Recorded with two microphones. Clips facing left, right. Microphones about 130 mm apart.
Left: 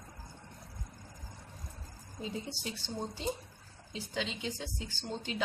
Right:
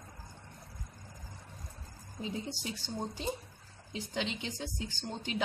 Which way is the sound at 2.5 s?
15° right (ahead or behind).